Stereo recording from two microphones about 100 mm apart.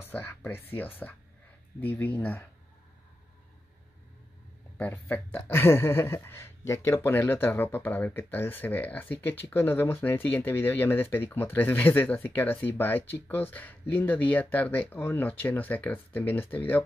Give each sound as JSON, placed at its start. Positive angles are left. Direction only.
{"t": 0.0, "sound": "speech", "side_deg": 20}
{"t": 4.7, "sound": "speech", "side_deg": 15}